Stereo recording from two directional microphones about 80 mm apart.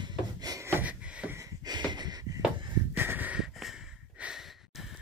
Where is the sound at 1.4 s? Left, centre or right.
Right.